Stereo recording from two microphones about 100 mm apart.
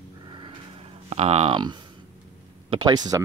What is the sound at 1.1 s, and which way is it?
Speech, 90° right.